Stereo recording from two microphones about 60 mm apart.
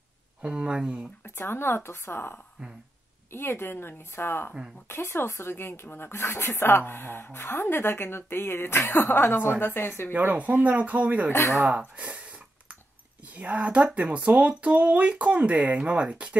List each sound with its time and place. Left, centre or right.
0.4 s speech: centre
1.2 s speech: left
10.1 s speech: right
13.4 s speech: right